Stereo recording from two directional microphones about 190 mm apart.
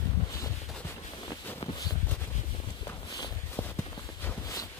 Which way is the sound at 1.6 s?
20° left (ahead or behind).